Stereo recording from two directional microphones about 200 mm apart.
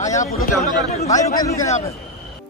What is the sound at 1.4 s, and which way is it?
Speech, 15° left (ahead or behind).